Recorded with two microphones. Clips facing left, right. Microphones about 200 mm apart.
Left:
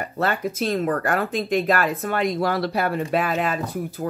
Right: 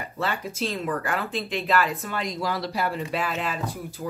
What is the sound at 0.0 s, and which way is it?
Speech, 50° left (ahead or behind).